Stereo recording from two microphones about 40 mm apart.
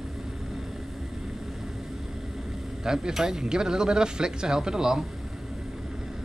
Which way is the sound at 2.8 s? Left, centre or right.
Centre.